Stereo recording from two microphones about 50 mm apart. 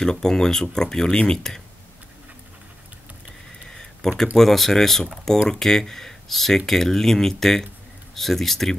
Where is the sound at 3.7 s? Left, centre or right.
Centre.